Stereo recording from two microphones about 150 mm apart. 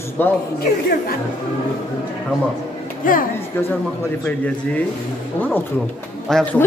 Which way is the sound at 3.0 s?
65° left (ahead or behind).